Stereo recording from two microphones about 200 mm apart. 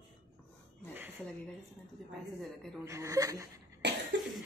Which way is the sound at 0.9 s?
10° right (ahead or behind).